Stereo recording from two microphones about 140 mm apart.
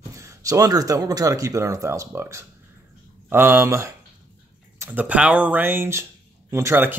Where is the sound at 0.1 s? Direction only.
20° right (ahead or behind).